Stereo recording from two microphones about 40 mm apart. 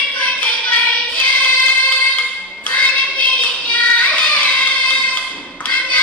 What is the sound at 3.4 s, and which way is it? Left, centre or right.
Child singing, left.